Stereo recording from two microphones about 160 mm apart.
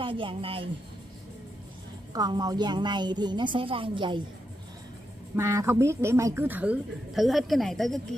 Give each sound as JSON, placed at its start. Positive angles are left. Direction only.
{"t": 0.0, "sound": "speech", "side_deg": -35}
{"t": 2.1, "sound": "a woman's voice", "side_deg": -25}
{"t": 5.3, "sound": "a woman's voice", "side_deg": -20}